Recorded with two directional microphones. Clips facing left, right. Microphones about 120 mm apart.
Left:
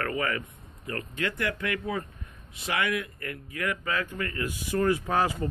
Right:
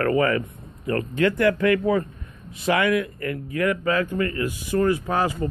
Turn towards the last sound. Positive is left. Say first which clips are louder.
# right 3 dB
turn(degrees=-35)  # may be behind; listen again after turning